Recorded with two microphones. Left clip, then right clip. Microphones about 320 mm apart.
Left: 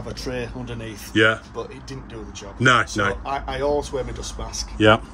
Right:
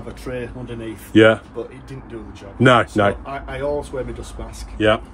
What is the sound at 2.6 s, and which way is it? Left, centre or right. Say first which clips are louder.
Speech: right 4 dB; centre.